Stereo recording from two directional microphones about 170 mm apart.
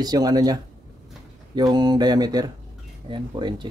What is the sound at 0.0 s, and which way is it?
A man's voice, 25° right (ahead or behind).